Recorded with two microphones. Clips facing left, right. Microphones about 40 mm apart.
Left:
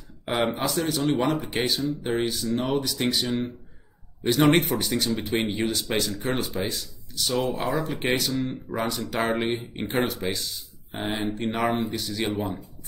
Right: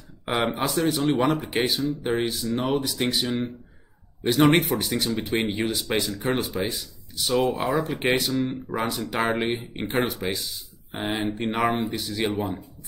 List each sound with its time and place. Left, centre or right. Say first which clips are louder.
0.2 s speech: even; centre
8.3 s speech: right 2 dB; right
8.6 s speech: right 1 dB; centre